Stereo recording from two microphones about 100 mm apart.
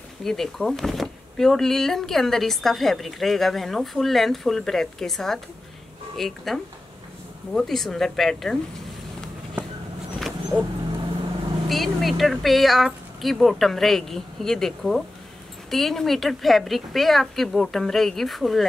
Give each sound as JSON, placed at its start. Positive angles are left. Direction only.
{"t": 0.2, "sound": "speech", "side_deg": 5}
{"t": 10.1, "sound": "dog", "side_deg": 0}
{"t": 11.7, "sound": "speech", "side_deg": 0}